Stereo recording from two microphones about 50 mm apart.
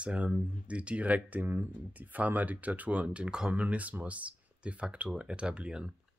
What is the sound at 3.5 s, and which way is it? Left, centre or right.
Speech, right.